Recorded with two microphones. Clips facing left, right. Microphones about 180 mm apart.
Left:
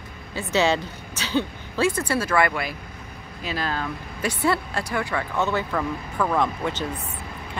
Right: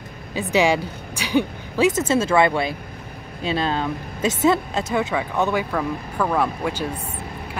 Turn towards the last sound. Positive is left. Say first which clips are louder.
# right 2 dB
turn(degrees=-10)  # may be behind; listen again after turning